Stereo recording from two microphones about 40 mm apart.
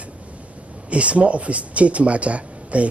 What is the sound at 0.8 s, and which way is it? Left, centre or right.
Speech, right.